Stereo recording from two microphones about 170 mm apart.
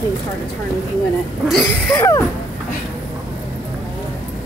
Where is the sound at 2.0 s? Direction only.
20° left (ahead or behind).